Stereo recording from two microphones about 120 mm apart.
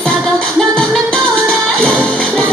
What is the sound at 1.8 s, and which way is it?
Music, 5° left (ahead or behind).